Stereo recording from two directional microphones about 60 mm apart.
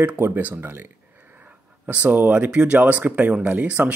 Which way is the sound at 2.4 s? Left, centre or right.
Centre.